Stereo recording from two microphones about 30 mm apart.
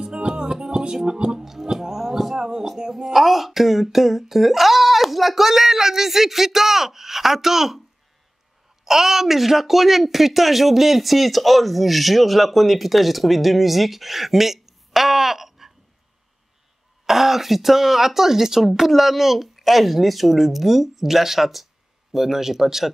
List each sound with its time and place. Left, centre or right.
0.0 s music: right
1.4 s speech: centre
1.7 s a sound: centre
3.0 s speech: centre
8.8 s speech: centre
17.0 s speech: centre